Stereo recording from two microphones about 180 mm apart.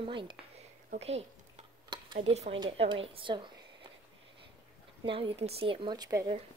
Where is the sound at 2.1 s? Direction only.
35° right (ahead or behind).